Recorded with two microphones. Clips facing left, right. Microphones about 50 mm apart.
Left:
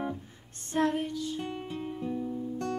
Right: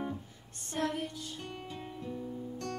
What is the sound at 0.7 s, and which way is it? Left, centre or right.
Child singing, left.